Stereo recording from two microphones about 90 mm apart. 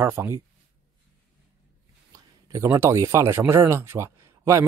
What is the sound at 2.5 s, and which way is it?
Speech, 30° right (ahead or behind).